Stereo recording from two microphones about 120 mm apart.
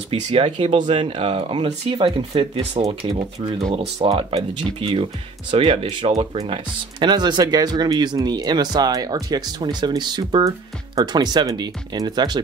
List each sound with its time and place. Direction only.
0.1 s speech: 45° right (ahead or behind)